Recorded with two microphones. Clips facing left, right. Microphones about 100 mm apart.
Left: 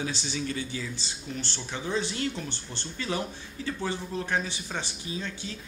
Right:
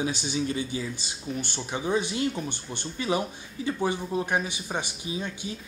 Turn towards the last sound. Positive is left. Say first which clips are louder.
# right 3 dB
turn(degrees=-15)  # may be behind; listen again after turning